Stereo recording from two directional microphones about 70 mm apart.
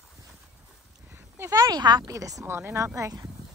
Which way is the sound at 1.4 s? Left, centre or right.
Right.